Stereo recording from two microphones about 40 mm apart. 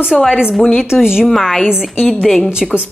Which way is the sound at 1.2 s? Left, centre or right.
Centre.